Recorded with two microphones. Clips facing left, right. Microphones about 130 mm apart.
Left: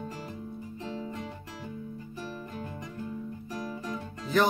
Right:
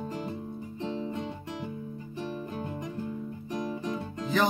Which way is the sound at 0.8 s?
20° right (ahead or behind).